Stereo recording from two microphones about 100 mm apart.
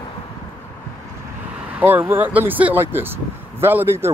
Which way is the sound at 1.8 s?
20° right (ahead or behind).